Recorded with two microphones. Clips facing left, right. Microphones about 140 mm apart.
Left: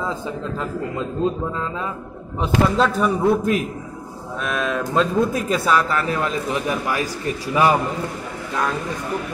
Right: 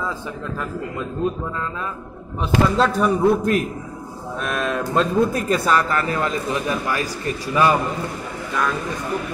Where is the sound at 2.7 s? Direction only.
Centre (ahead or behind); by 7.7 s 15° left (ahead or behind).